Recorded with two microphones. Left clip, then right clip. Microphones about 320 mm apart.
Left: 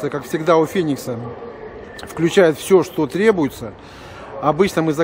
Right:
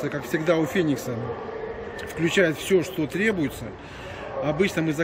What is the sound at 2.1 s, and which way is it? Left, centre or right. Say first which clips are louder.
A man's voice: left 8 dB; centre.